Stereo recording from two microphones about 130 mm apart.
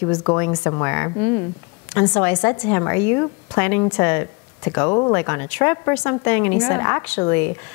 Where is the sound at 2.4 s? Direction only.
20° left (ahead or behind).